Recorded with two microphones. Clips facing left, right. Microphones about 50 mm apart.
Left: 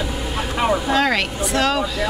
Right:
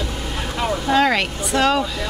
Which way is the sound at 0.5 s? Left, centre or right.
Centre.